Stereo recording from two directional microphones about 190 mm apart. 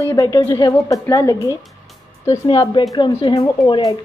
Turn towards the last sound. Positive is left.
turn(degrees=20)  # may be behind; listen again after turning